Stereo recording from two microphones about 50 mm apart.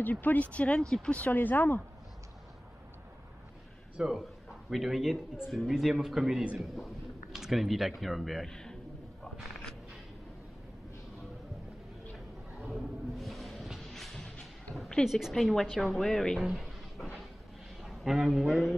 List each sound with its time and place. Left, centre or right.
0.0 s speech: left
1.3 s speech: left
4.0 s a man's voice: centre
8.5 s a sound: centre
12.6 s a sound: centre
13.8 s music: centre
15.0 s speech: centre
15.6 s speech: centre
15.9 s speech: centre
17.8 s a sound: centre
18.5 s speech: centre